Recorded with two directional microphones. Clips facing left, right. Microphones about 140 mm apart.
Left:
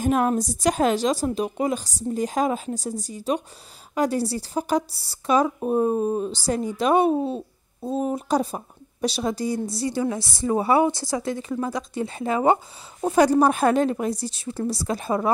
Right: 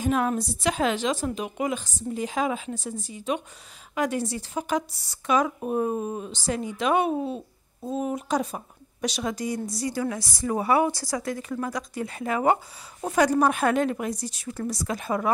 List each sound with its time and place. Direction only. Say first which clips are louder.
0.0 s a woman's voice: left 3 dB; 45° left (ahead or behind)